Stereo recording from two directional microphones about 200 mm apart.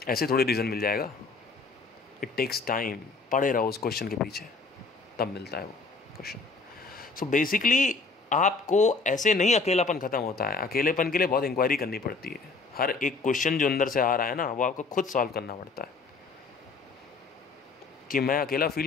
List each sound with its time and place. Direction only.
0.0 s speech: 50° left (ahead or behind)
2.1 s speech: 45° left (ahead or behind)
6.2 s speech: 40° left (ahead or behind)
18.0 s speech: 45° left (ahead or behind)